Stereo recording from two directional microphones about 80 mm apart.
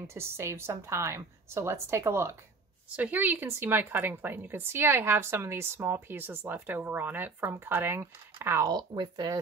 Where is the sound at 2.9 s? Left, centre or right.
Right.